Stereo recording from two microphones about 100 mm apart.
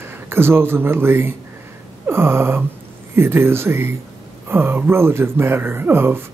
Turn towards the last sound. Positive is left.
turn(degrees=-25)  # may be behind; listen again after turning